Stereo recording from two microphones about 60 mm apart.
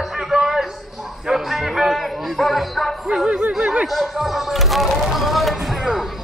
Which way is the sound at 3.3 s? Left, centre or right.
Right.